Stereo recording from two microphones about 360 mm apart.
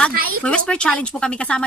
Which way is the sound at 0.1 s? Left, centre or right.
Right.